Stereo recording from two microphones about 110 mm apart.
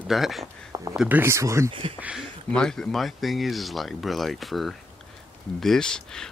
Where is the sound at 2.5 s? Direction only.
5° left (ahead or behind).